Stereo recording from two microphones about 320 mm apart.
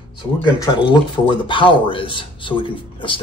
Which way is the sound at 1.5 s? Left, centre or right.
Centre.